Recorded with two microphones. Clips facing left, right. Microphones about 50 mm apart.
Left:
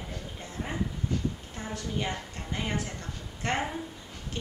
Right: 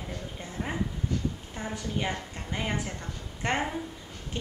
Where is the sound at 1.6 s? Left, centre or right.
Centre.